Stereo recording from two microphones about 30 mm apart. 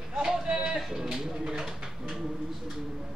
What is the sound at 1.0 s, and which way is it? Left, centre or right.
Bird, centre.